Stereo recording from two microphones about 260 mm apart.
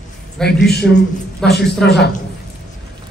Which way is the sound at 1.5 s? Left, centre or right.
Left.